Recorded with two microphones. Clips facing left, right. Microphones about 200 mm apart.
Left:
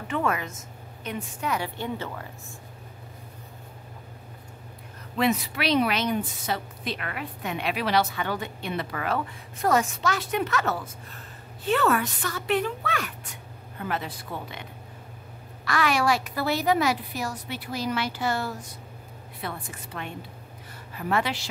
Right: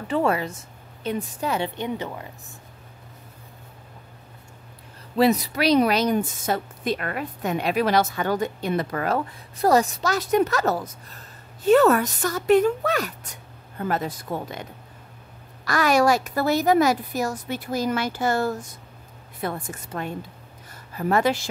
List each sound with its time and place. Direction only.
0.1 s a woman's voice: 30° right (ahead or behind)
5.1 s a woman's voice: 35° right (ahead or behind)